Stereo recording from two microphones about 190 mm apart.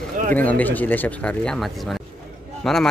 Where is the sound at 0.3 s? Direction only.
10° left (ahead or behind).